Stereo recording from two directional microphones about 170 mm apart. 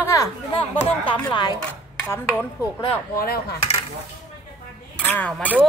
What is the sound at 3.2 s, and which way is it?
Coin, 65° left (ahead or behind).